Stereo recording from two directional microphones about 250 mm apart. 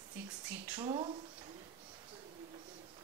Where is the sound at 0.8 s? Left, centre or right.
Centre.